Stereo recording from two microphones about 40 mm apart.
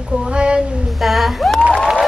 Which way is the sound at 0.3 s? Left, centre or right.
Right.